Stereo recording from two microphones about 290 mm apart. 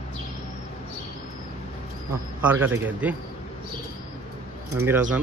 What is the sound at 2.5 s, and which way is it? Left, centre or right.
Speech, centre.